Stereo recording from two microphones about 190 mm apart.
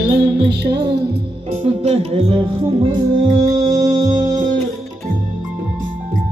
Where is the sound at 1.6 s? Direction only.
35° right (ahead or behind).